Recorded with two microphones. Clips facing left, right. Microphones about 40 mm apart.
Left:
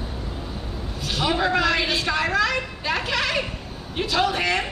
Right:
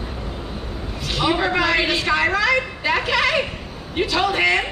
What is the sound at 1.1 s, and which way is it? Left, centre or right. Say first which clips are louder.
A woman's voice: right 2 dB; centre.